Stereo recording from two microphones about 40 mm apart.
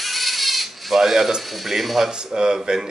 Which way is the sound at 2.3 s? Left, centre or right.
Centre.